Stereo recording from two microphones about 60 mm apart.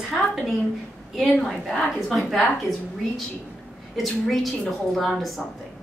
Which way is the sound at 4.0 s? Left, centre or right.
Centre.